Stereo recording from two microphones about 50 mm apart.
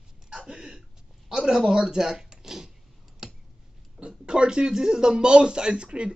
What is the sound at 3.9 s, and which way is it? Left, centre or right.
A man's voice, centre.